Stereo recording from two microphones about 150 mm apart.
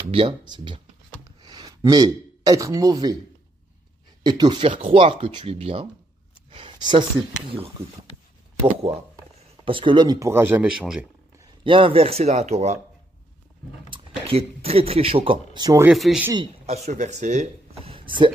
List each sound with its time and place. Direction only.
0.1 s speech: 35° right (ahead or behind)
1.2 s a sound: 25° right (ahead or behind)
2.4 s speech: 20° right (ahead or behind)
4.2 s speech: 30° right (ahead or behind)
9.7 s speech: 35° right (ahead or behind); by 11.1 s 5° right (ahead or behind)
11.6 s speech: 35° right (ahead or behind)
13.9 s speech: 40° right (ahead or behind)
15.9 s speech: centre (ahead or behind)
16.6 s speech: 45° right (ahead or behind)